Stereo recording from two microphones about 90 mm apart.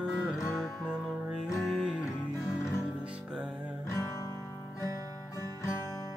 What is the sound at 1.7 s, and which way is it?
Music, 5° right (ahead or behind).